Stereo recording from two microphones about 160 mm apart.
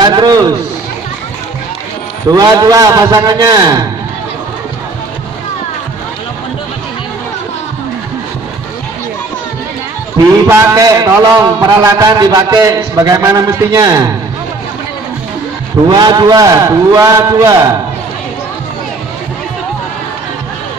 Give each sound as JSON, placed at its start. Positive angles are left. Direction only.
{"t": 0.0, "sound": "a man's voice", "side_deg": -25}
{"t": 2.3, "sound": "a man's voice", "side_deg": -20}
{"t": 10.5, "sound": "a man's voice", "side_deg": -20}
{"t": 15.9, "sound": "a man's voice", "side_deg": -25}